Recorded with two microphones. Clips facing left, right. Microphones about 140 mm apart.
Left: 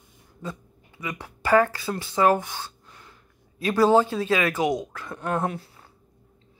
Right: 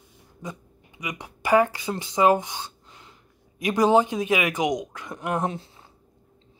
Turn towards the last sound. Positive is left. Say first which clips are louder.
# even
turn(degrees=-25)  # may be behind; listen again after turning